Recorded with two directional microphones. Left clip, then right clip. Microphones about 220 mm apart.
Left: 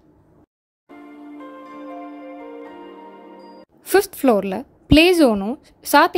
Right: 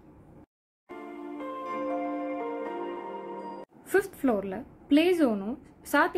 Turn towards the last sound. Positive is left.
turn(degrees=40)  # may be behind; listen again after turning